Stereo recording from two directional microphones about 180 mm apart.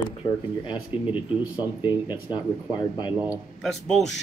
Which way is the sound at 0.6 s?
30° left (ahead or behind).